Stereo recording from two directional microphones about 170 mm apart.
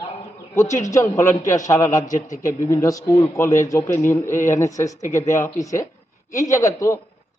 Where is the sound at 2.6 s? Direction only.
20° left (ahead or behind).